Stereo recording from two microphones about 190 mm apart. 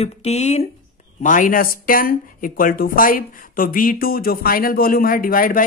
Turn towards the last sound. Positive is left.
turn(degrees=50)  # may be behind; listen again after turning